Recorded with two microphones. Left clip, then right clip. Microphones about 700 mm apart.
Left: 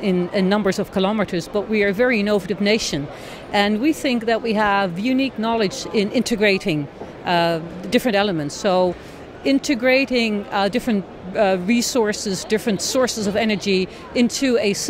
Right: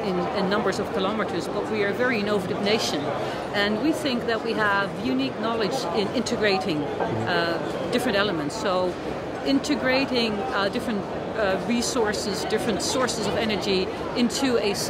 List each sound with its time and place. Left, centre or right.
0.4 s speech: left